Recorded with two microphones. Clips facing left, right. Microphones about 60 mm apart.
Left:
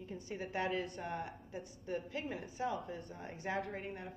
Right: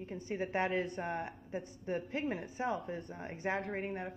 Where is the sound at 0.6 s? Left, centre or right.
Right.